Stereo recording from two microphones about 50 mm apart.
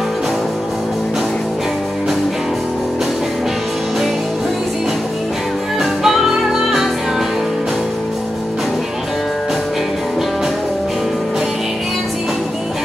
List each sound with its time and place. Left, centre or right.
5.8 s music: centre